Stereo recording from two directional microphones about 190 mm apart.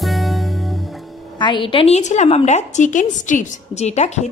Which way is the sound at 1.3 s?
25° left (ahead or behind).